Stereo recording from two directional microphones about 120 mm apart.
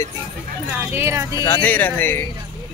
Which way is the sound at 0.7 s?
20° right (ahead or behind).